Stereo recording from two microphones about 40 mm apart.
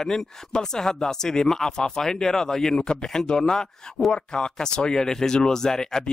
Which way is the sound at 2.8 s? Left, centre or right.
Left.